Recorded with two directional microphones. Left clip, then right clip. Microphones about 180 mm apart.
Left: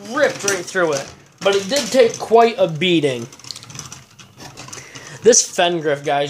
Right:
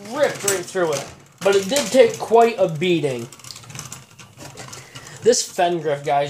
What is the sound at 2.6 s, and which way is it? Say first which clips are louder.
Speech: left 3 dB; 30° left (ahead or behind).